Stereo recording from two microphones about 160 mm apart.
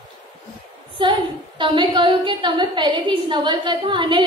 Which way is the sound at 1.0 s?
30° right (ahead or behind).